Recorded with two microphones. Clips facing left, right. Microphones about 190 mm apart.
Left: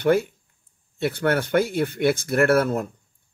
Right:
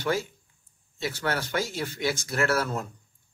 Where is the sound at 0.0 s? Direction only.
60° left (ahead or behind).